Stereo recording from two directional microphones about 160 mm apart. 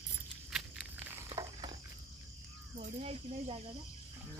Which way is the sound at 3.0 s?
40° right (ahead or behind).